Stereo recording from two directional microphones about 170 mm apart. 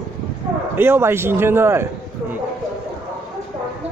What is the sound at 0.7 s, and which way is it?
Speech, 15° right (ahead or behind).